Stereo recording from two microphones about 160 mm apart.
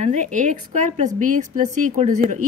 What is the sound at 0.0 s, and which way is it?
A woman's voice, 50° right (ahead or behind).